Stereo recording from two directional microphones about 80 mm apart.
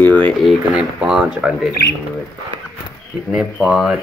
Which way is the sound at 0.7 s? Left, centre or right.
Centre.